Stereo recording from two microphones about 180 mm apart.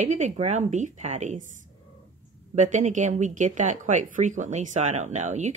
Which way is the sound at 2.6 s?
40° right (ahead or behind).